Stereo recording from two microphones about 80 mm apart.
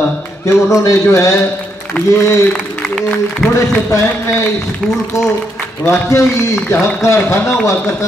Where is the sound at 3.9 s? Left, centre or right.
Left.